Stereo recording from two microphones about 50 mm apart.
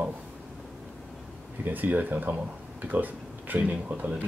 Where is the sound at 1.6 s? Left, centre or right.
Right.